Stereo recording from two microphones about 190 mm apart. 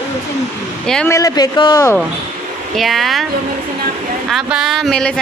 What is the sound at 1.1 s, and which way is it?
Speech, 20° left (ahead or behind).